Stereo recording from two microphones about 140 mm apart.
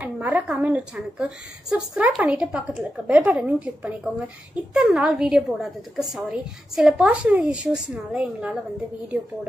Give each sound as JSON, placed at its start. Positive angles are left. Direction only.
{"t": 0.0, "sound": "a woman's voice", "side_deg": -10}